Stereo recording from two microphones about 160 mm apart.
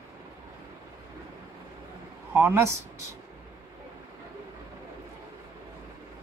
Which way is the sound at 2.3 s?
15° right (ahead or behind).